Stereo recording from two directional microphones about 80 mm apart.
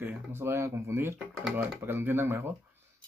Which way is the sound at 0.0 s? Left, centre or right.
Right.